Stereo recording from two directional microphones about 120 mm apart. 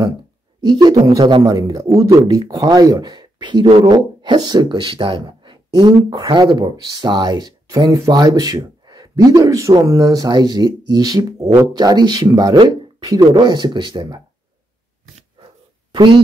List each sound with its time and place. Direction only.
0.6 s speech: 35° right (ahead or behind)
15.9 s speech: 40° right (ahead or behind)